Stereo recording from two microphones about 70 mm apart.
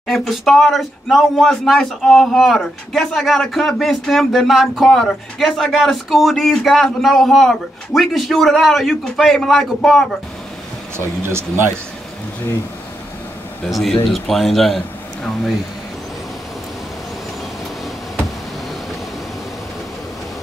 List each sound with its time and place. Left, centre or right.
0.0 s speech: centre
11.0 s speech: right
13.7 s speech: centre